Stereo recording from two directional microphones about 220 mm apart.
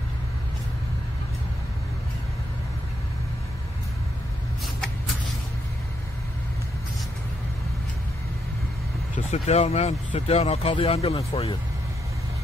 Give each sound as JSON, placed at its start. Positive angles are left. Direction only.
{"t": 9.1, "sound": "speech", "side_deg": 30}